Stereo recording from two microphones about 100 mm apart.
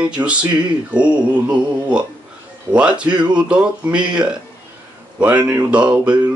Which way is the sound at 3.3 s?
10° right (ahead or behind).